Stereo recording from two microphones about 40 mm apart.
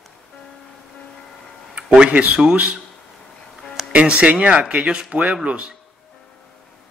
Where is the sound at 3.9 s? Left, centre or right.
Right.